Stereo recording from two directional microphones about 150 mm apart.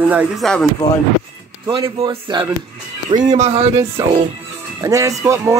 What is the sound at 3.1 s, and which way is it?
Speech, 50° right (ahead or behind).